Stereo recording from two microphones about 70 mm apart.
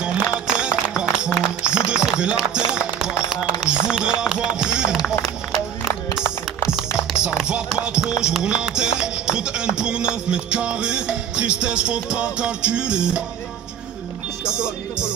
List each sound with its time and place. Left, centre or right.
0.0 s music: centre
3.6 s speech: centre
5.0 s run: centre
7.0 s speech: centre
14.4 s music: centre